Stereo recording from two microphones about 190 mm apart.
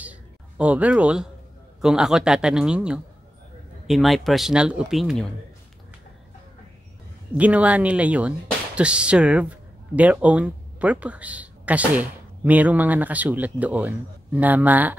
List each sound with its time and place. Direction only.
0.0 s a sound: 5° right (ahead or behind)
1.8 s speech: 5° right (ahead or behind)
7.3 s speech: 5° right (ahead or behind)